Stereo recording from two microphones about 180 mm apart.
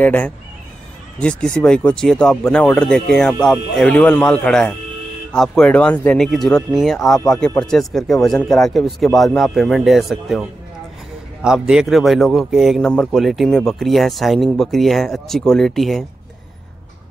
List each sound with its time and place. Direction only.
0.0 s speech: 10° left (ahead or behind)
11.4 s speech: 5° right (ahead or behind)